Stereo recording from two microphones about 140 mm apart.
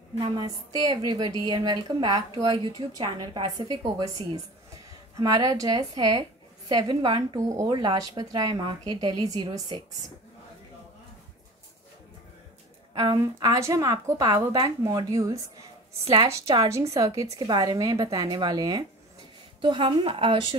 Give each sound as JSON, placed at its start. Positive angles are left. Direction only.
{"t": 0.2, "sound": "a woman's voice", "side_deg": -30}
{"t": 5.2, "sound": "a woman's voice", "side_deg": -25}
{"t": 13.2, "sound": "a woman's voice", "side_deg": -25}